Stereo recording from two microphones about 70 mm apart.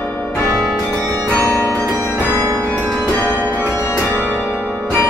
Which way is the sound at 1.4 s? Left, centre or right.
Left.